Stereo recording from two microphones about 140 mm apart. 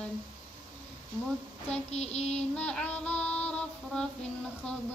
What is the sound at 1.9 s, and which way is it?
Child singing, 50° left (ahead or behind).